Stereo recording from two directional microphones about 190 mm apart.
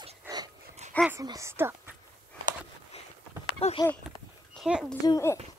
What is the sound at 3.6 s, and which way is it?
Speech, 35° left (ahead or behind).